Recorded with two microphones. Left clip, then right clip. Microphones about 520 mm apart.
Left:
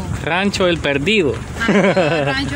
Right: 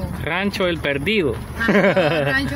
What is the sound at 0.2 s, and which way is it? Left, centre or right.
Speech, right.